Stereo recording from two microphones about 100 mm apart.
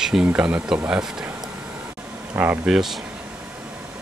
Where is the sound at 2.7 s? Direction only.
5° right (ahead or behind).